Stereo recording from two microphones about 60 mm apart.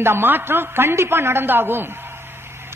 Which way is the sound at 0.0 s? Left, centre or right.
Right.